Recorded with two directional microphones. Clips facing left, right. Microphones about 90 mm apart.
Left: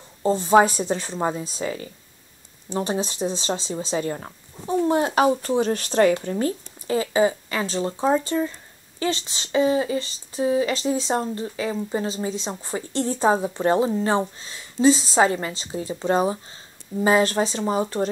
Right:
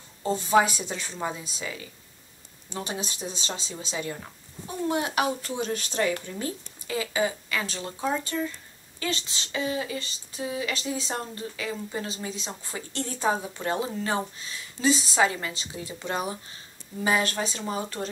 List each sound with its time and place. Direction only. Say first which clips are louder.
0.2 s speech: left 6 dB; 30° left (ahead or behind)
7.0 s speech: left 7 dB; 30° left (ahead or behind)